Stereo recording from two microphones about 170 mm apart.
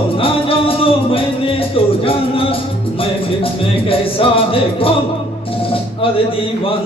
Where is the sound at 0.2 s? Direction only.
35° left (ahead or behind).